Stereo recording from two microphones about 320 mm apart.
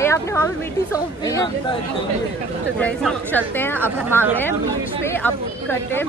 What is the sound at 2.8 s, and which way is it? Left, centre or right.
Speech, centre.